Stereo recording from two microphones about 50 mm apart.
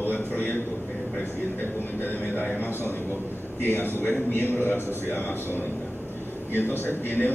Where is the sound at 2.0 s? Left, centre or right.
Left.